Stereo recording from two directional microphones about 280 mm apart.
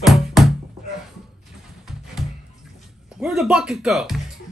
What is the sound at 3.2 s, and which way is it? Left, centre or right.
Speech, centre.